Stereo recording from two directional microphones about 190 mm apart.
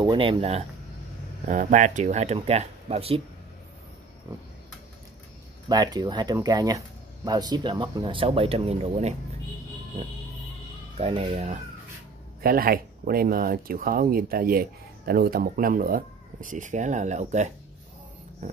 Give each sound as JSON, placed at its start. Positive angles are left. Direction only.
{"t": 0.0, "sound": "speech", "side_deg": -25}
{"t": 5.7, "sound": "speech", "side_deg": -20}
{"t": 11.0, "sound": "speech", "side_deg": -30}
{"t": 12.4, "sound": "speech", "side_deg": -50}